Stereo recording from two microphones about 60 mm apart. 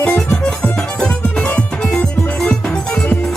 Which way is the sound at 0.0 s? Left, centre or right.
Left.